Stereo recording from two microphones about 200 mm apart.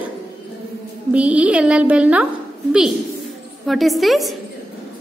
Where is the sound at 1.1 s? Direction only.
5° right (ahead or behind).